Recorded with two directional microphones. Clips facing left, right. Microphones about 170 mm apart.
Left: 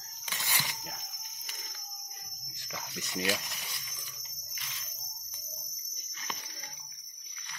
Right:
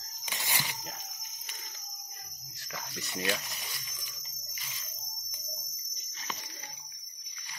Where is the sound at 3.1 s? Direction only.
15° left (ahead or behind).